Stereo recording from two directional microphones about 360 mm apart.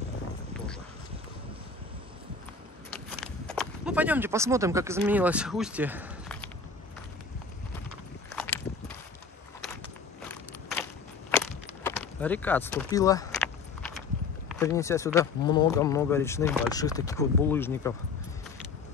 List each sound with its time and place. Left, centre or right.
2.9 s a sound: centre
8.4 s walk: centre
10.2 s walk: centre
11.8 s speech: centre
14.5 s speech: centre